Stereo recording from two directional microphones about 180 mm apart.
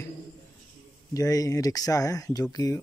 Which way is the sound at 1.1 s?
20° left (ahead or behind).